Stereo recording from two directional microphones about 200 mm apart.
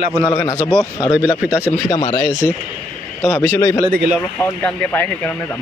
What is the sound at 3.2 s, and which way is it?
Speech, 10° left (ahead or behind).